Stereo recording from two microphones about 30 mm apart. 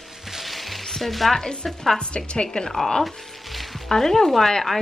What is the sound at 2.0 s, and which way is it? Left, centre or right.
Speech, left.